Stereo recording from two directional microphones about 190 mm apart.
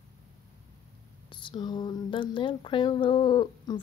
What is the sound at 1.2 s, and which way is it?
Speech, 25° left (ahead or behind).